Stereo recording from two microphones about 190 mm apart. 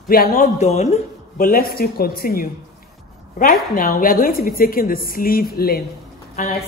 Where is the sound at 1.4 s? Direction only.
50° left (ahead or behind).